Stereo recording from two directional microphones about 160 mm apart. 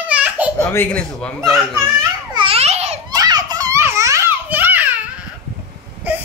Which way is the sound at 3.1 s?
25° right (ahead or behind).